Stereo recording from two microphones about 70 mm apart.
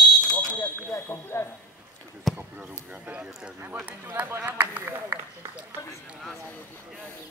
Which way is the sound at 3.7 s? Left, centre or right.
Right.